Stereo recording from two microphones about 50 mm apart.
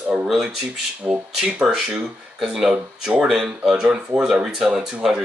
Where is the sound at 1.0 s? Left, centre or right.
Right.